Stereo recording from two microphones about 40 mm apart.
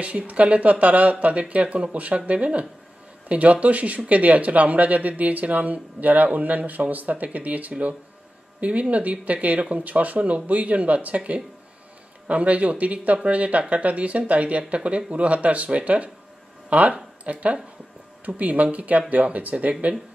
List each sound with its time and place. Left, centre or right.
0.0 s speech: right